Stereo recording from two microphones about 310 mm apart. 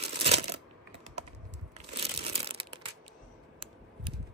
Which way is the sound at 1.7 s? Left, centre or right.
Centre.